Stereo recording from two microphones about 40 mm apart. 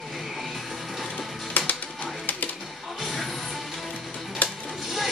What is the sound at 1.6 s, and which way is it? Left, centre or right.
Music, left.